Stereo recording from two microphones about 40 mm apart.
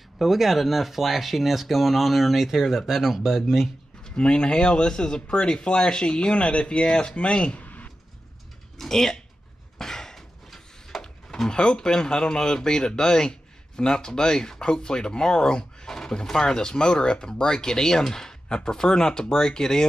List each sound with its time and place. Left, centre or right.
0.2 s speech: centre
4.1 s speech: left
7.6 s a sound: left
8.7 s speech: centre
9.8 s a sound: centre
11.0 s speech: centre